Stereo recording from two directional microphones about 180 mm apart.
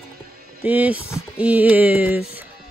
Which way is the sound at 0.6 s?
10° right (ahead or behind).